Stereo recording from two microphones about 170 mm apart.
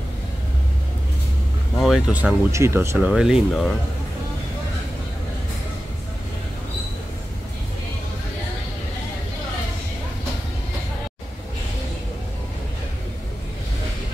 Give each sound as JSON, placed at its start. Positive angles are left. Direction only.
{"t": 1.8, "sound": "speech", "side_deg": 0}
{"t": 2.5, "sound": "speech", "side_deg": -15}
{"t": 3.0, "sound": "speech", "side_deg": -5}